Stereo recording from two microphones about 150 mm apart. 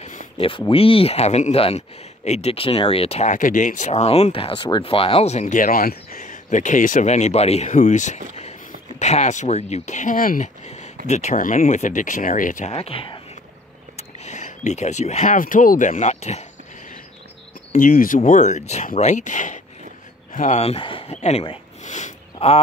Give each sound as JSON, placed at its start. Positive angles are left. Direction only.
{"t": 0.4, "sound": "speech", "side_deg": 35}
{"t": 3.3, "sound": "speech", "side_deg": 60}
{"t": 12.7, "sound": "speech", "side_deg": 40}
{"t": 13.9, "sound": "speech", "side_deg": 50}
{"t": 17.7, "sound": "speech", "side_deg": 65}